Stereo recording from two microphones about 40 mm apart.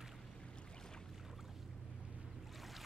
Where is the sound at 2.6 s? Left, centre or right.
Centre.